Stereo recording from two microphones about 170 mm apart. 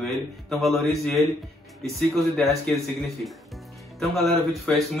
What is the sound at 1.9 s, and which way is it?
Speech, centre (ahead or behind).